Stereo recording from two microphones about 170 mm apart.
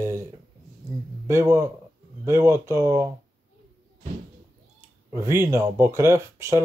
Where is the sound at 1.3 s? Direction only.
15° right (ahead or behind).